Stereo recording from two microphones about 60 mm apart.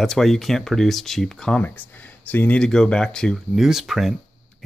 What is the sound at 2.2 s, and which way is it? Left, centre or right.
Speech, left.